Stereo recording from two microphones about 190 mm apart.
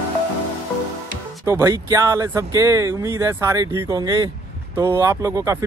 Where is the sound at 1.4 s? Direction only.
15° right (ahead or behind).